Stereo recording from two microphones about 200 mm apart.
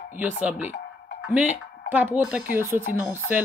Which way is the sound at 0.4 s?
10° right (ahead or behind).